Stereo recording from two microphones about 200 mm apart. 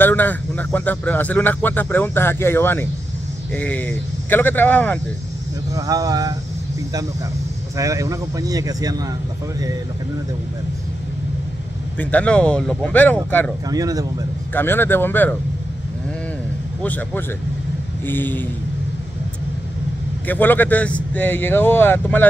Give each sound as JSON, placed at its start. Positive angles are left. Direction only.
{"t": 0.0, "sound": "speech", "side_deg": 10}
{"t": 5.8, "sound": "speech", "side_deg": -20}
{"t": 7.7, "sound": "speech", "side_deg": -15}
{"t": 12.0, "sound": "speech", "side_deg": 5}
{"t": 13.7, "sound": "speech", "side_deg": -20}
{"t": 14.5, "sound": "speech", "side_deg": 10}
{"t": 16.8, "sound": "speech", "side_deg": 10}
{"t": 20.2, "sound": "speech", "side_deg": 10}